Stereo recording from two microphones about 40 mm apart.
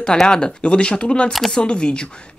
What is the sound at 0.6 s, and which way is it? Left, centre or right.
Speech, left.